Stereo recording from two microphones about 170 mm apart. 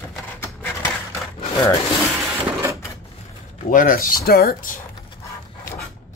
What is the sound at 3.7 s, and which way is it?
Speech, 55° left (ahead or behind).